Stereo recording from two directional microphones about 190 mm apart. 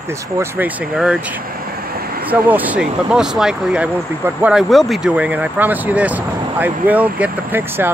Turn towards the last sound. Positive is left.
turn(degrees=-10)  # may be behind; listen again after turning